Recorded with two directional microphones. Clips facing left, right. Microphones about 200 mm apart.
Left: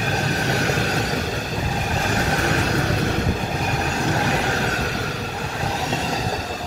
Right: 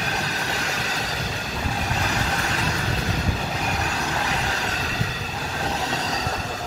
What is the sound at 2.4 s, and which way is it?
Train, 55° left (ahead or behind).